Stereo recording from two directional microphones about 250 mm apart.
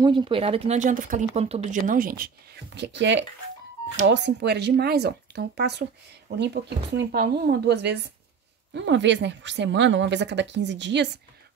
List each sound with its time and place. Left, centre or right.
0.0 s speech: centre; by 11.1 s right